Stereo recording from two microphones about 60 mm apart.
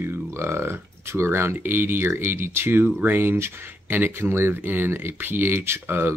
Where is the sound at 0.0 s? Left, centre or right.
Right.